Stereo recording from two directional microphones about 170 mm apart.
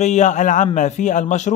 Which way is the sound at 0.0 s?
45° left (ahead or behind).